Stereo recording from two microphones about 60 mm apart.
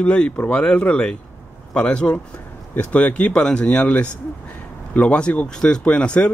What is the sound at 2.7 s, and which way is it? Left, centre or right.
Speech, left.